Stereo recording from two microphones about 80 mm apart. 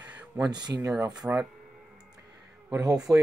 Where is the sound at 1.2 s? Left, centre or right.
Centre.